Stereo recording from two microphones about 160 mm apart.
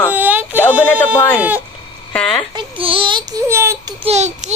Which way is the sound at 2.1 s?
5° left (ahead or behind).